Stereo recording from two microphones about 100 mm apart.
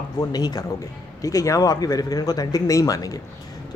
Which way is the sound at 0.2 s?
40° left (ahead or behind).